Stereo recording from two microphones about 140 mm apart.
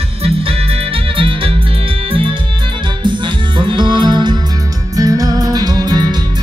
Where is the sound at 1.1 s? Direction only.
40° right (ahead or behind).